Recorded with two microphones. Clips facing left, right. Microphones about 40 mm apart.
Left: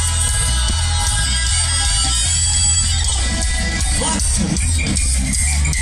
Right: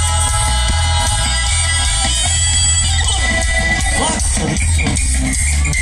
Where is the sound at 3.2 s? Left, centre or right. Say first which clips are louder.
Right 7 dB; right.